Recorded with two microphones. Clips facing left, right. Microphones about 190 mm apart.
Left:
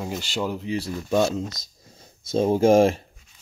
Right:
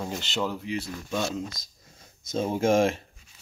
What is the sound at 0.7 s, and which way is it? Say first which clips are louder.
Speech: left 7 dB; 35° left (ahead or behind).